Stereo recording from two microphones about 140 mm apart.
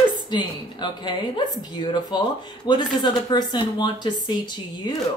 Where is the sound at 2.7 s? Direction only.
30° left (ahead or behind).